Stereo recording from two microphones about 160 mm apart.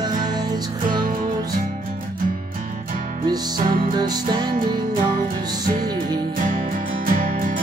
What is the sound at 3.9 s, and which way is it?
Speech, 25° right (ahead or behind).